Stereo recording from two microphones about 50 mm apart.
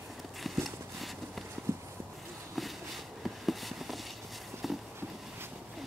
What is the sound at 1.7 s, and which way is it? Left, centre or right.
Horse, right.